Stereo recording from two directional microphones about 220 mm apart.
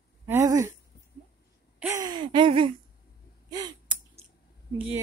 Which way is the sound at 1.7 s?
10° right (ahead or behind).